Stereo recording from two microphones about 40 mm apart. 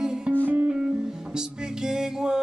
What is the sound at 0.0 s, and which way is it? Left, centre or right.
Music, centre.